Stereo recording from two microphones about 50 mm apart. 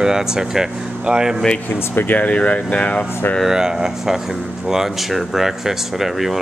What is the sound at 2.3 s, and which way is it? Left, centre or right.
Speech, left.